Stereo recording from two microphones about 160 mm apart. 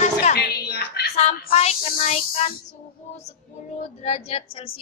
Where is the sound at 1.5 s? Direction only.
40° left (ahead or behind).